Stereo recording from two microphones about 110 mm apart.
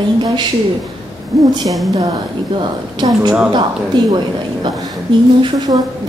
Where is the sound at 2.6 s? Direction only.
45° right (ahead or behind).